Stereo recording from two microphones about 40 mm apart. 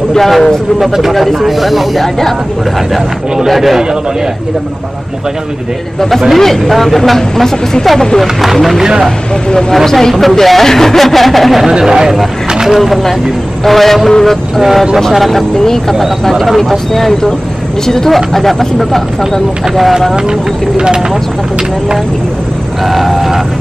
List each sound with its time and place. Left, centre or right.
0.1 s speech: centre
0.7 s speech: centre
3.4 s speech: centre
5.9 s speech: centre
9.5 s speech: centre
11.8 s speech: centre
15.5 s speech: centre
15.9 s speech: centre
20.2 s speech: right
22.8 s speech: centre